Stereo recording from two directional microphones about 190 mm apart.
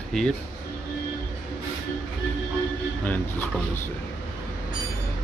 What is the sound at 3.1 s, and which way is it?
Speech, 10° left (ahead or behind).